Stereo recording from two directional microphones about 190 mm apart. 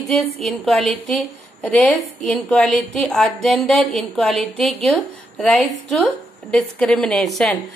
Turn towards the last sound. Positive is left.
turn(degrees=0)  # may be behind; listen again after turning